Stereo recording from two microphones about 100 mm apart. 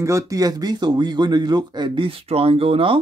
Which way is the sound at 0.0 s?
35° right (ahead or behind).